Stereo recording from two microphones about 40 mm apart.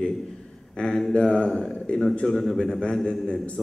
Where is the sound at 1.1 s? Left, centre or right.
Left.